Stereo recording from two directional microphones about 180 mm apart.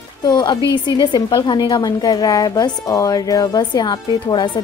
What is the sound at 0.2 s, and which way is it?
A woman's voice, 25° left (ahead or behind).